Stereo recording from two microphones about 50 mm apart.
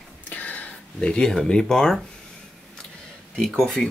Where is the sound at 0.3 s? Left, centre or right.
Left.